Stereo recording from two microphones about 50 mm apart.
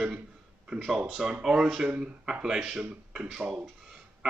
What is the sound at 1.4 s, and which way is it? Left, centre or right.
Speech, centre.